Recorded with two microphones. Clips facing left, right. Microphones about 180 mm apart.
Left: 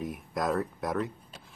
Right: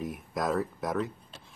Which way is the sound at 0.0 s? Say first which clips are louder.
Even; centre (ahead or behind).